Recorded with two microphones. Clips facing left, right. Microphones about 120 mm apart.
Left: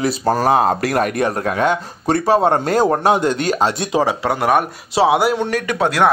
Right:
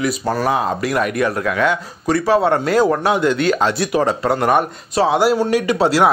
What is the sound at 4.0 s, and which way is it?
Speech, 10° left (ahead or behind).